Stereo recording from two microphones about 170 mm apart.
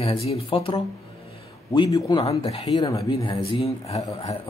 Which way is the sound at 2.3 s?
35° left (ahead or behind).